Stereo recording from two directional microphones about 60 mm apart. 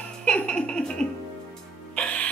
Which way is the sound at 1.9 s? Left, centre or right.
Left.